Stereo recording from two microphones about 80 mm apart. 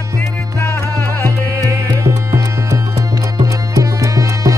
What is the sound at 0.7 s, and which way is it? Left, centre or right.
Music, left.